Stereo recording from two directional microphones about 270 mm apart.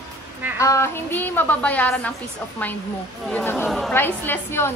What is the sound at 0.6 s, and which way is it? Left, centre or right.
A woman's voice, centre.